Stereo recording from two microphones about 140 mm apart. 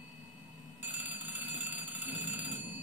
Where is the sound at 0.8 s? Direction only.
10° right (ahead or behind).